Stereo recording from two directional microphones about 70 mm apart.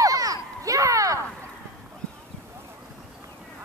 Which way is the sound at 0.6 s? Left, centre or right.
Right.